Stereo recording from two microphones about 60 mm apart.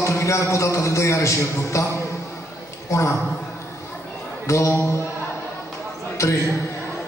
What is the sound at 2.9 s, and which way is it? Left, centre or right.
Speech, left.